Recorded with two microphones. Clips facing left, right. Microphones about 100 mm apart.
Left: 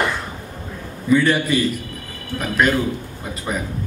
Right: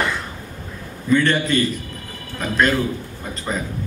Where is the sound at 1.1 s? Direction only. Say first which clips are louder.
Left 1 dB; 10° left (ahead or behind).